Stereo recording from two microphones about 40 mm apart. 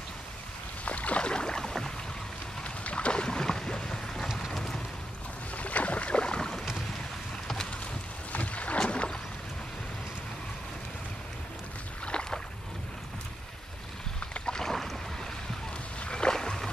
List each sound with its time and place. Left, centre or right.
0.8 s rowboat: left
1.2 s boat: left
2.6 s boat: left
4.5 s vehicle: centre
5.6 s boat: left
8.3 s boat: left
8.7 s boat: left
12.1 s boat: left
14.3 s boat: centre
16.0 s a sound: left